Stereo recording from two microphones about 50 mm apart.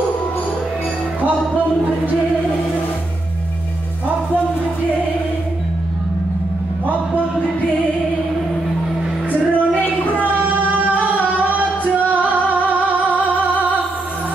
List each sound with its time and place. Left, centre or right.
9.3 s music: left
9.8 s a sound: left
10.3 s singing: right
11.5 s music: right